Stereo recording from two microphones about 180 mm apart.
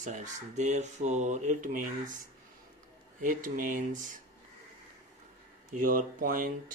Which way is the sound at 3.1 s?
50° right (ahead or behind).